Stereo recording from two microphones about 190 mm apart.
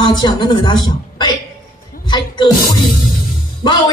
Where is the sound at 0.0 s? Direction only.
25° left (ahead or behind).